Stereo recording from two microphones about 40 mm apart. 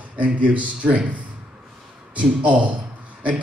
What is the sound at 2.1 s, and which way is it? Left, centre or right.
Speech, right.